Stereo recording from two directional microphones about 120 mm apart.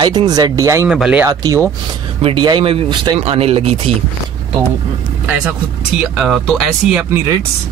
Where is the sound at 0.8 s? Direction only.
5° right (ahead or behind).